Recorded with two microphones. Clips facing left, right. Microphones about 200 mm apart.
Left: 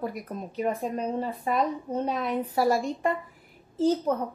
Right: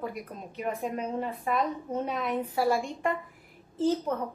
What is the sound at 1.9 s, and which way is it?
Speech, centre (ahead or behind).